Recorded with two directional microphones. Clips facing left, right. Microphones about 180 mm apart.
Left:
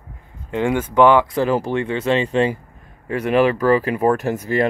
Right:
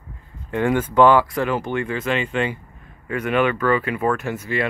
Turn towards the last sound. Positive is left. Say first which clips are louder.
# left 5 dB
turn(degrees=40)  # may be behind; listen again after turning